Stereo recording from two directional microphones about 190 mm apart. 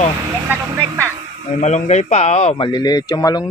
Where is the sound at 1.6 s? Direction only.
35° left (ahead or behind); by 3.4 s 20° left (ahead or behind).